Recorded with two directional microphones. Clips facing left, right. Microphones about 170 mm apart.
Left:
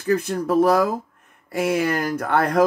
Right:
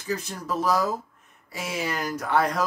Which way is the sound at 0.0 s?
55° left (ahead or behind).